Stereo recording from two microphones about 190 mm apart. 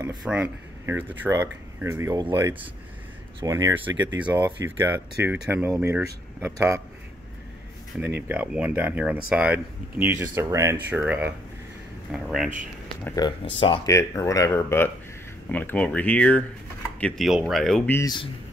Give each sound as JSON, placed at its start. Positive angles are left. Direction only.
{"t": 0.2, "sound": "speech", "side_deg": -5}
{"t": 8.0, "sound": "speech", "side_deg": -10}
{"t": 13.0, "sound": "speech", "side_deg": 20}
{"t": 13.8, "sound": "speech", "side_deg": 15}
{"t": 17.9, "sound": "speech", "side_deg": 20}